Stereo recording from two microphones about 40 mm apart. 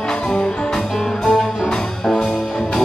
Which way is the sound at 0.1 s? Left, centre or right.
Centre.